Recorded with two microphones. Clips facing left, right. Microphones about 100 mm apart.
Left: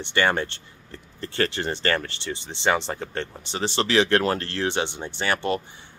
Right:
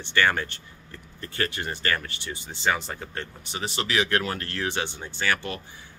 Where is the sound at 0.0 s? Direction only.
25° left (ahead or behind).